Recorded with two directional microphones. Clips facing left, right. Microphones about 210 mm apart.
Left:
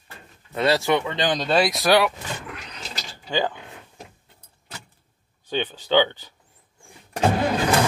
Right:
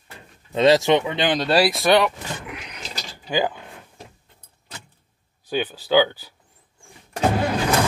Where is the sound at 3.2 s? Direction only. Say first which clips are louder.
Right 2 dB; 10° right (ahead or behind).